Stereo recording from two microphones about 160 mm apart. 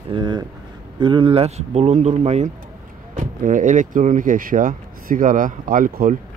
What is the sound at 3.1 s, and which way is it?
Speech, 55° right (ahead or behind).